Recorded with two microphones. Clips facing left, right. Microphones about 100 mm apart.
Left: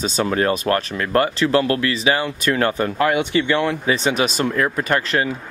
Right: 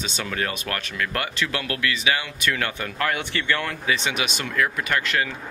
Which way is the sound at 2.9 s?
20° left (ahead or behind).